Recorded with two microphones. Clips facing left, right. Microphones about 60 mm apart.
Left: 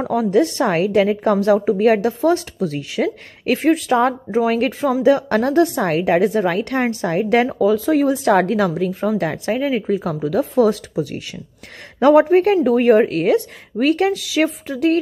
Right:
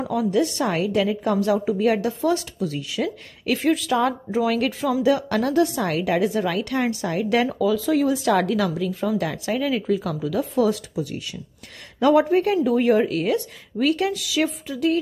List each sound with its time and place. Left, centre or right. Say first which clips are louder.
0.0 s a woman's voice: left 5 dB; left